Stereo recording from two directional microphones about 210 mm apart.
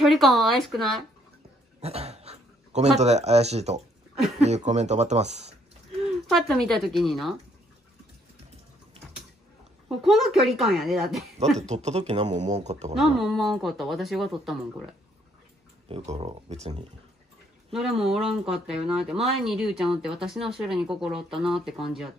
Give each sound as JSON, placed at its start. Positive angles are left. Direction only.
{"t": 0.0, "sound": "speech", "side_deg": 0}
{"t": 1.8, "sound": "speech", "side_deg": -30}
{"t": 6.0, "sound": "speech", "side_deg": 0}
{"t": 9.8, "sound": "speech", "side_deg": 0}
{"t": 11.6, "sound": "speech", "side_deg": -30}
{"t": 12.9, "sound": "speech", "side_deg": 0}
{"t": 15.9, "sound": "speech", "side_deg": -30}
{"t": 17.6, "sound": "speech", "side_deg": 0}